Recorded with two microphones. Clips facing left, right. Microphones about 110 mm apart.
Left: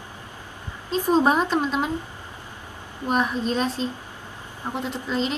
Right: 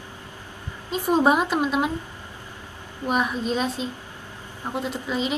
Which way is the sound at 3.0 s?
5° right (ahead or behind).